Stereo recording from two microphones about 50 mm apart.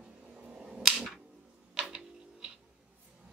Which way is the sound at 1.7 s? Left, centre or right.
Centre.